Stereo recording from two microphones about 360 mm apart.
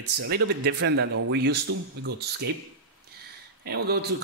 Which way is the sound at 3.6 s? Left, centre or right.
Right.